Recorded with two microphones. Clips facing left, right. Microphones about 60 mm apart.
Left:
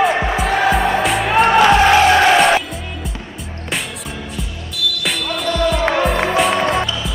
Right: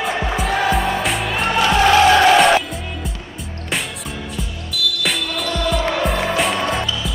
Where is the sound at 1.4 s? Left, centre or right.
Left.